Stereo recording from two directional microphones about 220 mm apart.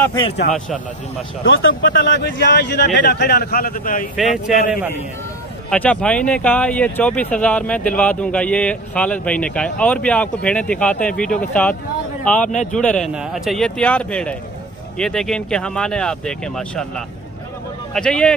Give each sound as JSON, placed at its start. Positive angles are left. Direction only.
{"t": 0.0, "sound": "speech", "side_deg": 20}
{"t": 1.5, "sound": "speech", "side_deg": 60}
{"t": 4.2, "sound": "speech", "side_deg": 0}
{"t": 5.7, "sound": "speech", "side_deg": 5}
{"t": 12.7, "sound": "speech", "side_deg": 5}
{"t": 17.9, "sound": "speech", "side_deg": 5}